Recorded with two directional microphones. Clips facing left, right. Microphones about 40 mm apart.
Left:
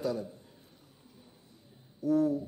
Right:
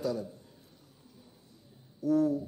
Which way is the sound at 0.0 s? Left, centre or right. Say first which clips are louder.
Even; left.